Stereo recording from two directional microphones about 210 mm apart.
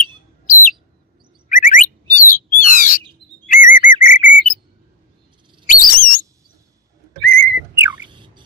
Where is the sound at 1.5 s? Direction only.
40° left (ahead or behind).